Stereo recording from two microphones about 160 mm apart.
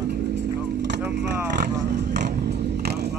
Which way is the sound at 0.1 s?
90° right.